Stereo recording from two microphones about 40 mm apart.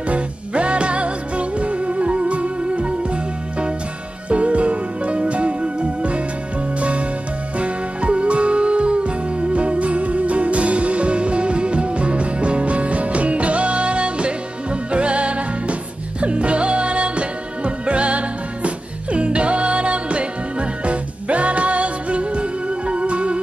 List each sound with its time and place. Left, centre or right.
0.1 s music: right